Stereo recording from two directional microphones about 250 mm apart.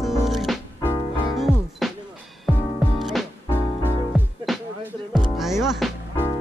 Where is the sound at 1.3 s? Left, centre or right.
Centre.